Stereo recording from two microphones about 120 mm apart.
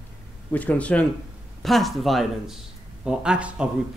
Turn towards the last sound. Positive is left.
turn(degrees=-5)  # may be behind; listen again after turning